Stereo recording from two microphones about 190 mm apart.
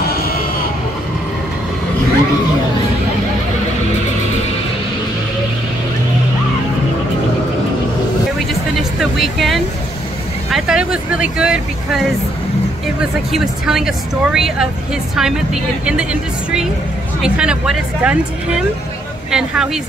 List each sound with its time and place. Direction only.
0.1 s music: 50° left (ahead or behind)
8.7 s a sound: centre (ahead or behind)
10.5 s speech: 5° right (ahead or behind)